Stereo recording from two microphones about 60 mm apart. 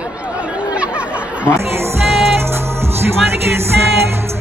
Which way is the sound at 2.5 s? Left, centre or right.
Right.